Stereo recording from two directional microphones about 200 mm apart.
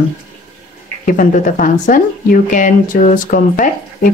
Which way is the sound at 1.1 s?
40° left (ahead or behind).